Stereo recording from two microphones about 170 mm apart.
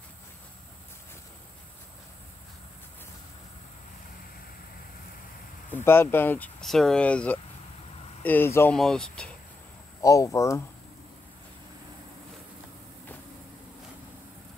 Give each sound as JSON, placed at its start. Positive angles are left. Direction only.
{"t": 5.7, "sound": "speech", "side_deg": 15}
{"t": 10.0, "sound": "speech", "side_deg": 20}